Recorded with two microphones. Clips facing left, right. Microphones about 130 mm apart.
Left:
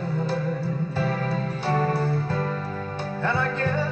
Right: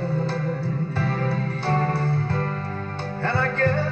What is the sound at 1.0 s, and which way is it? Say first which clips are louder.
Music: even; 15° left (ahead or behind).